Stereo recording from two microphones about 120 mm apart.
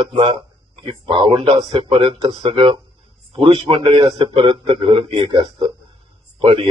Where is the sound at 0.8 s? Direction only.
45° right (ahead or behind).